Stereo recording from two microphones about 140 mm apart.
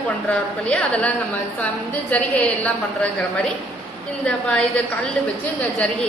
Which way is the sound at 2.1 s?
10° left (ahead or behind).